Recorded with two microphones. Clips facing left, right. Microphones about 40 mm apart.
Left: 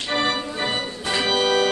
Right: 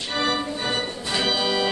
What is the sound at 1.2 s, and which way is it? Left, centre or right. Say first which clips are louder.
Music: left 4 dB; left.